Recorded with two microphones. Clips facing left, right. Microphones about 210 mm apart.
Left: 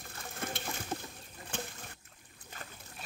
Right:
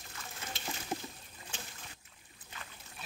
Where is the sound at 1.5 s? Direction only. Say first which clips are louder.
Left 9 dB; 60° left (ahead or behind).